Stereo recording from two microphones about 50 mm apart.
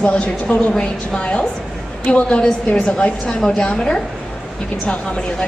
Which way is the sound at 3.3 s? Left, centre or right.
Centre.